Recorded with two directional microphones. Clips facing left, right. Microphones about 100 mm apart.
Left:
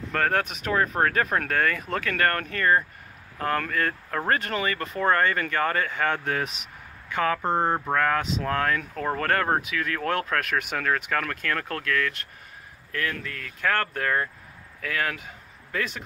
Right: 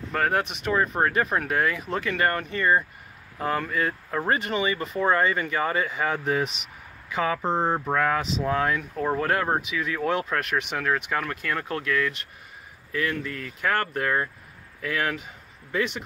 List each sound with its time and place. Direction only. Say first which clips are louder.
0.1 s speech: even; 5° right (ahead or behind)
7.9 s speech: even; 10° right (ahead or behind)